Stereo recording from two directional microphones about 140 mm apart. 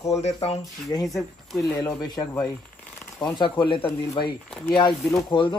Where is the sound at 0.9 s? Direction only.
25° left (ahead or behind).